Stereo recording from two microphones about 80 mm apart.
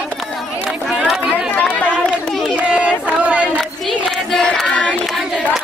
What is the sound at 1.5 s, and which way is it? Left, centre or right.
Chatter, left.